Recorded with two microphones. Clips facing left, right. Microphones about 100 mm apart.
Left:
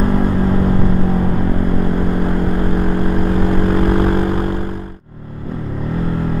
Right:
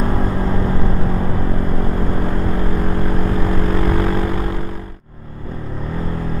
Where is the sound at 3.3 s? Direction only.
50° left (ahead or behind).